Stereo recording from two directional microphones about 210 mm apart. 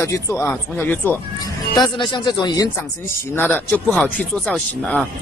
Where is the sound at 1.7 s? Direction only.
20° left (ahead or behind); by 5.1 s 5° left (ahead or behind).